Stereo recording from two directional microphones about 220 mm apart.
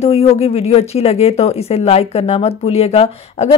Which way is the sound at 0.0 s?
30° left (ahead or behind).